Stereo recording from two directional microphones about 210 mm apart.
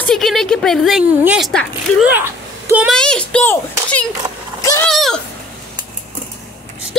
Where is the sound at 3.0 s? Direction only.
5° left (ahead or behind).